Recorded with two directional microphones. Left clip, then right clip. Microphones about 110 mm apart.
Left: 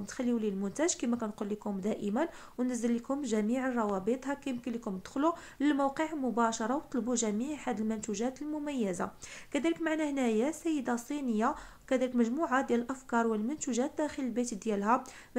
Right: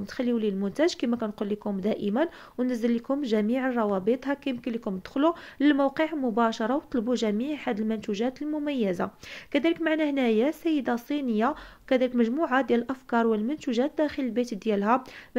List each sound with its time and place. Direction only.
0.0 s speech: 25° right (ahead or behind)